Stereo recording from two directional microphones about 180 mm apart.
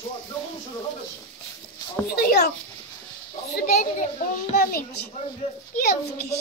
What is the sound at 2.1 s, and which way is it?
Speech, 60° left (ahead or behind).